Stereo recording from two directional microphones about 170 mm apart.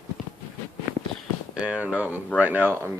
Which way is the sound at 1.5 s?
5° right (ahead or behind).